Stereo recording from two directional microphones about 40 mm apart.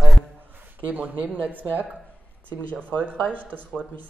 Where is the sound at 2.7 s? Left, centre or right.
Left.